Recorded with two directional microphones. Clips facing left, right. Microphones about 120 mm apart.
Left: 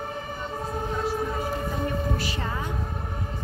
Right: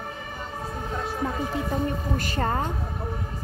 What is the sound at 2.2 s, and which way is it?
Speech, 50° right (ahead or behind).